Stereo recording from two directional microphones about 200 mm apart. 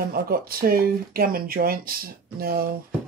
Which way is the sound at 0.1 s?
45° right (ahead or behind).